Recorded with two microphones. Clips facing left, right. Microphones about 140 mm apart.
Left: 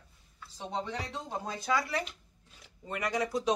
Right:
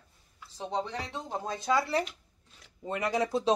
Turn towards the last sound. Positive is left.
turn(degrees=-30)  # may be behind; listen again after turning